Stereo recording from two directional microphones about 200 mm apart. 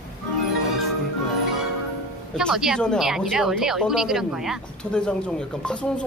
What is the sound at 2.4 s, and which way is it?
A woman's voice, centre (ahead or behind).